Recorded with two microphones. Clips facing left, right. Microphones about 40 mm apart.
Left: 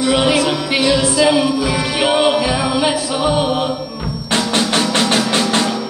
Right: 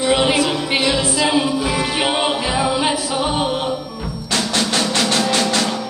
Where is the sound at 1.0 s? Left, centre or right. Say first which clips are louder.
Left 4 dB; left.